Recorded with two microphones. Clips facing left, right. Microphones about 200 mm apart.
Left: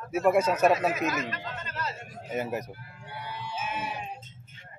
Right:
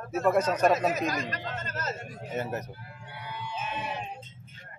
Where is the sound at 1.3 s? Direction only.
45° right (ahead or behind).